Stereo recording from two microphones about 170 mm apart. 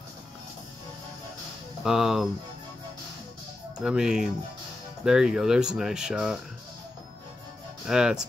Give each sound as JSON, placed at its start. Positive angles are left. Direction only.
{"t": 1.8, "sound": "speech", "side_deg": 0}
{"t": 3.7, "sound": "speech", "side_deg": -5}
{"t": 7.8, "sound": "speech", "side_deg": -5}